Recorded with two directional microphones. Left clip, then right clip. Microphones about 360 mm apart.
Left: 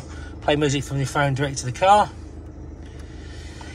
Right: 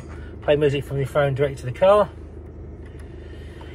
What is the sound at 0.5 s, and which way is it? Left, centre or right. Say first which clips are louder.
Speech: right 2 dB; centre.